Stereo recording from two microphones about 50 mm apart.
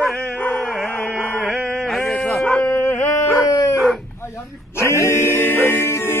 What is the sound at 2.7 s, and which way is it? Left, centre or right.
Dog, left.